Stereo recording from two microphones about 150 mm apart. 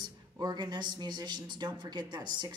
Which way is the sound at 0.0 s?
25° right (ahead or behind).